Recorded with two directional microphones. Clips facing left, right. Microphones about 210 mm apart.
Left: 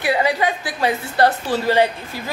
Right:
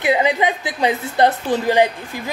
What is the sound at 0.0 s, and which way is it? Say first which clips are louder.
A woman's voice: right 2 dB; 20° right (ahead or behind).